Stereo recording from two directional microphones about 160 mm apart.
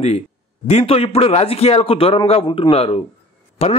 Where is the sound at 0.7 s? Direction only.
40° left (ahead or behind).